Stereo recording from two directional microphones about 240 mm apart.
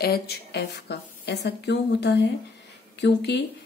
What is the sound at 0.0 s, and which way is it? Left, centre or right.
Speech, left.